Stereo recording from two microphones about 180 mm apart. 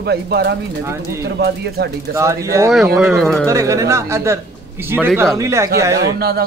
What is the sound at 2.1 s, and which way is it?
Speech, 15° right (ahead or behind).